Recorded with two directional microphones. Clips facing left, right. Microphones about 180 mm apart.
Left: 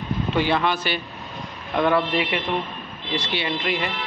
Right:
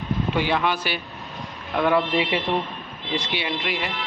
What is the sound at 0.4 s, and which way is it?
Speech, 10° right (ahead or behind).